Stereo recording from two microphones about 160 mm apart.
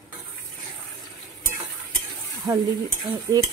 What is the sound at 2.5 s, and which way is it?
Speech, 25° right (ahead or behind).